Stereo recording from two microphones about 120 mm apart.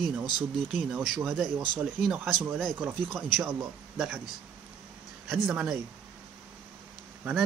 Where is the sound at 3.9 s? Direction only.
5° right (ahead or behind).